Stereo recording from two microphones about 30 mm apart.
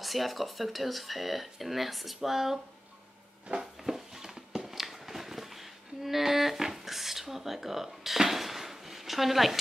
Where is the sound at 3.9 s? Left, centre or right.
Centre.